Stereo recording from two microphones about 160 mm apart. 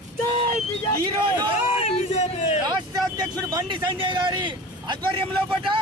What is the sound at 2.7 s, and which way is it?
A man's voice, 25° right (ahead or behind).